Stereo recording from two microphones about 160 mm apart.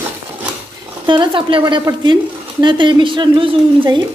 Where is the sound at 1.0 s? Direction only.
30° right (ahead or behind).